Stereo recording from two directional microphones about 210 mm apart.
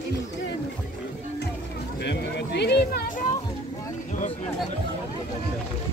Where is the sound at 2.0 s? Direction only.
55° left (ahead or behind).